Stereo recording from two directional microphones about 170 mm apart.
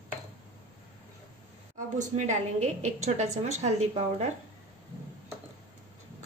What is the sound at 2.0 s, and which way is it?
A woman's voice, 45° right (ahead or behind).